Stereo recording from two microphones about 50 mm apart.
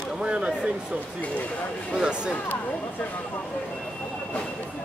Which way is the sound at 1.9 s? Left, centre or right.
Centre.